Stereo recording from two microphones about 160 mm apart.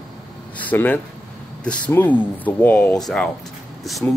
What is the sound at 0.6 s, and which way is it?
Speech, 10° left (ahead or behind).